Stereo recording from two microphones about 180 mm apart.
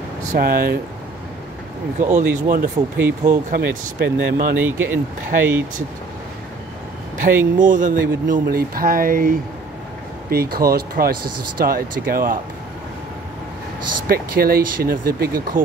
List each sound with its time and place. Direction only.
0.3 s speech: 55° right (ahead or behind)
2.0 s speech: 45° right (ahead or behind)
3.0 s speech: 10° right (ahead or behind)
3.5 s speech: 60° right (ahead or behind)
4.6 s speech: 10° right (ahead or behind)
7.2 s speech: 45° right (ahead or behind)
14.0 s speech: 55° right (ahead or behind)